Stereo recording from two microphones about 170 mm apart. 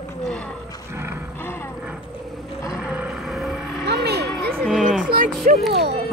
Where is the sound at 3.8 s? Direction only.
75° right (ahead or behind).